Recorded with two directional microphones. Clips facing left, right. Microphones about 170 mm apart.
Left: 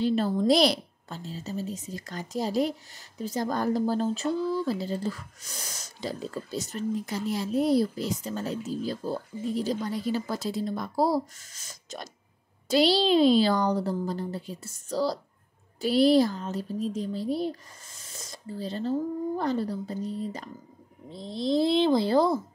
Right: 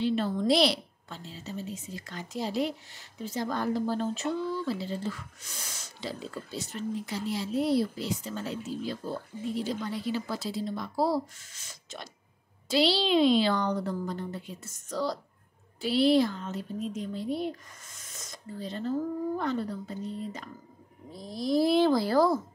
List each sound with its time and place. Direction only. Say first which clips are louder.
0.0 s a woman's voice: left 3 dB; 40° left (ahead or behind)
21.1 s speech: left 2 dB; 25° left (ahead or behind)